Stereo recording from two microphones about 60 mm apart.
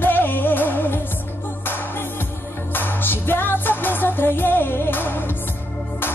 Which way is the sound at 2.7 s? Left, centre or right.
Left.